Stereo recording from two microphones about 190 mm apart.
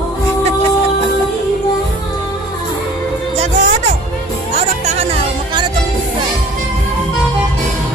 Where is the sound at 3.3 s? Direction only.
35° right (ahead or behind).